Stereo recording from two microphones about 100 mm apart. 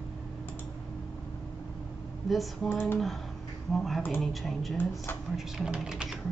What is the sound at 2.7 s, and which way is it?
Speech, 20° left (ahead or behind).